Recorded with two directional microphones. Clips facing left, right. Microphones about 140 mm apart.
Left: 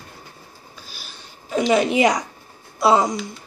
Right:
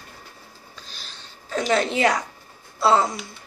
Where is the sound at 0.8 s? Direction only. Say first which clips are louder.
Left 1 dB; 10° left (ahead or behind).